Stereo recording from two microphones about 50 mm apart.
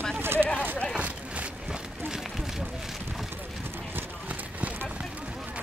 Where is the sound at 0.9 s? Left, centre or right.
Right.